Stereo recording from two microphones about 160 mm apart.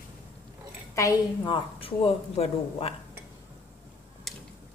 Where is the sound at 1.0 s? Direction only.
20° left (ahead or behind).